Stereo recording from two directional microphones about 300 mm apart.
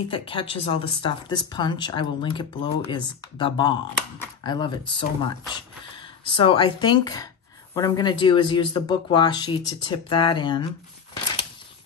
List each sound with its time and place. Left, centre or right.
0.1 s a woman's voice: centre